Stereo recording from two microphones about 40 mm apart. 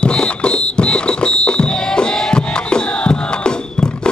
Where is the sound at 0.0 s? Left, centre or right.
Left.